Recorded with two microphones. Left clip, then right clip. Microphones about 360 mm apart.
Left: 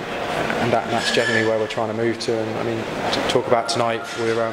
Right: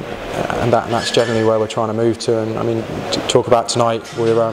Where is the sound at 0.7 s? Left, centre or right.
Right.